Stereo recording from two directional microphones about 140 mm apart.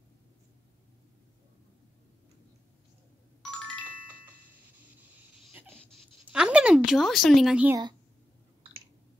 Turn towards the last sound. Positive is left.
turn(degrees=-5)  # may be behind; listen again after turning